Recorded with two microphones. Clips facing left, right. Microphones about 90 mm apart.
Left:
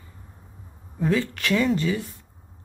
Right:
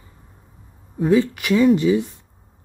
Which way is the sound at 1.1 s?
15° right (ahead or behind).